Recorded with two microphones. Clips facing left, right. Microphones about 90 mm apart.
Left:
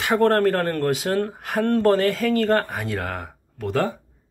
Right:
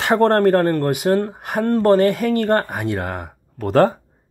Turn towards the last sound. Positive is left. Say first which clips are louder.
# right 8 dB
turn(degrees=-55)  # may be behind; listen again after turning